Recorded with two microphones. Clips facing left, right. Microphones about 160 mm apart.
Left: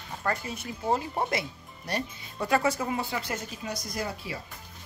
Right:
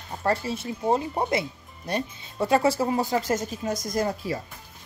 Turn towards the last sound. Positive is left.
turn(degrees=-45)  # may be behind; listen again after turning